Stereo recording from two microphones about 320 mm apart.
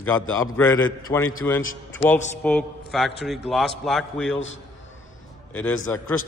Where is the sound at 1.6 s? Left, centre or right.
Left.